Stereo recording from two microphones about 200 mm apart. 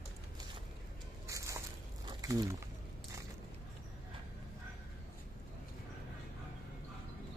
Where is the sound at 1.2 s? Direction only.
15° right (ahead or behind).